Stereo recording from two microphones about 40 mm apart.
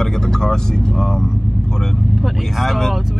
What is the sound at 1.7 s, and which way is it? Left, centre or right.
Vehicle, centre.